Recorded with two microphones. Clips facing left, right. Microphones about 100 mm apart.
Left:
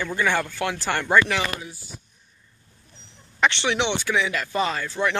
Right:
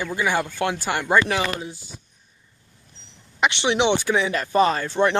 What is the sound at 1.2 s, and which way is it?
Speech, 25° right (ahead or behind).